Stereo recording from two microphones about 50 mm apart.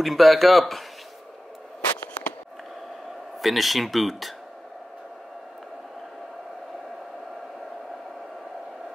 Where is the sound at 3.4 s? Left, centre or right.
Centre.